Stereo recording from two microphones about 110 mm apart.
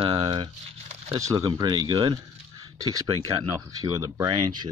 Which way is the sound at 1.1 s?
30° right (ahead or behind).